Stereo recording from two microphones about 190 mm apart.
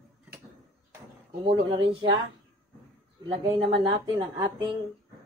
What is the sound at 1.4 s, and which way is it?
Speech, 30° right (ahead or behind).